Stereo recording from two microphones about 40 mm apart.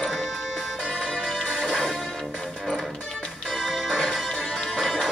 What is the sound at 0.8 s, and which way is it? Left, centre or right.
Music, centre.